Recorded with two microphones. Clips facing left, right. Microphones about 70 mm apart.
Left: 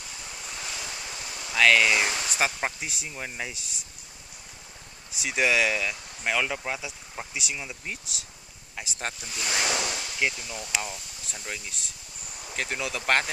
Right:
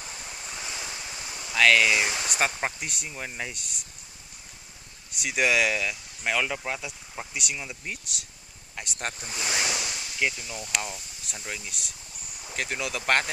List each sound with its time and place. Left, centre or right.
0.6 s waves: centre
1.4 s speech: centre
5.2 s speech: centre
9.7 s a sound: left
10.1 s speech: centre